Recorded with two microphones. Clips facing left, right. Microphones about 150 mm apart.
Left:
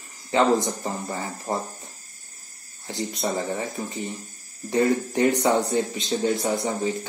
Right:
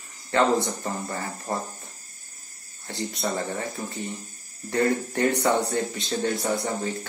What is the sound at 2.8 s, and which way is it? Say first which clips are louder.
Speech: left 2 dB; 20° left (ahead or behind).